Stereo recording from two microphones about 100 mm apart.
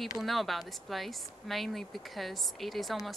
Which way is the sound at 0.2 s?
Centre (ahead or behind).